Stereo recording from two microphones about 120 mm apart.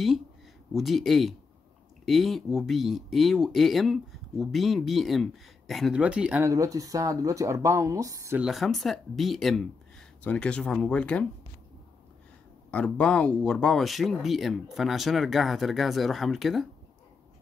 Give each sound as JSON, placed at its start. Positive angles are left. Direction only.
{"t": 0.7, "sound": "speech", "side_deg": 0}
{"t": 6.4, "sound": "speech", "side_deg": -25}
{"t": 8.4, "sound": "speech", "side_deg": 0}
{"t": 12.7, "sound": "speech", "side_deg": 10}